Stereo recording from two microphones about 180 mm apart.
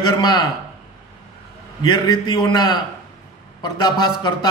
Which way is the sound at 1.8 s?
25° left (ahead or behind).